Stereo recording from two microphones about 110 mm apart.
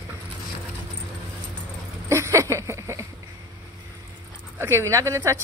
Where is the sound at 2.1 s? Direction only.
25° right (ahead or behind).